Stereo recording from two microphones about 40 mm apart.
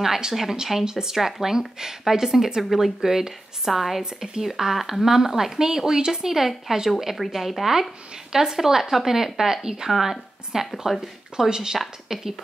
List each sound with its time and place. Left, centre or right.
0.0 s speech: centre
4.0 s speech: right
4.4 s speech: centre
8.3 s speech: centre